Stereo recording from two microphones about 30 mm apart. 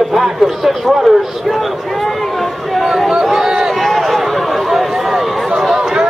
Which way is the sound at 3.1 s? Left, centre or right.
Centre.